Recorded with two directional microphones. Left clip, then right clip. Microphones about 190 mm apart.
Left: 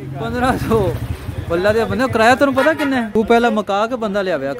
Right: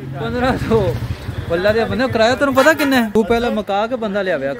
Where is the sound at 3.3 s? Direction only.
45° left (ahead or behind).